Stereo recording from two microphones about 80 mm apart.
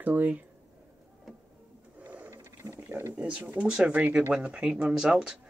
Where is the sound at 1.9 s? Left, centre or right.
Right.